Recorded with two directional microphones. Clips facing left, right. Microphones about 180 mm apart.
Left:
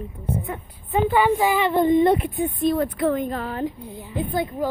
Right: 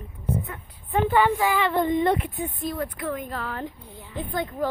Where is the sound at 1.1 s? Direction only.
15° left (ahead or behind).